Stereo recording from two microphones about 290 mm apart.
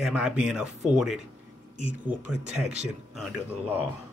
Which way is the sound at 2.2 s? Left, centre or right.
Centre.